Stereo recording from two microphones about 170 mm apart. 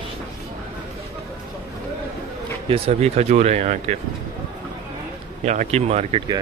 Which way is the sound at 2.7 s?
40° right (ahead or behind).